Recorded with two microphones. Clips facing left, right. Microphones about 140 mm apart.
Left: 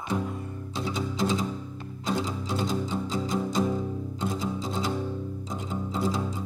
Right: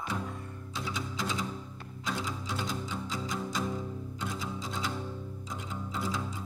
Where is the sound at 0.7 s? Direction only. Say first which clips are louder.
Left 6 dB; 30° left (ahead or behind).